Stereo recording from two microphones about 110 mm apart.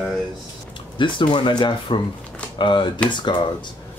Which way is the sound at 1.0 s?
45° left (ahead or behind).